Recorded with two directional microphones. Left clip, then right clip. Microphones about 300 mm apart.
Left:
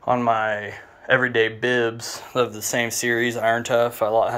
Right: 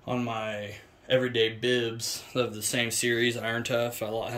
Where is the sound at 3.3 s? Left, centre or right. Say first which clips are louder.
Left 11 dB; left.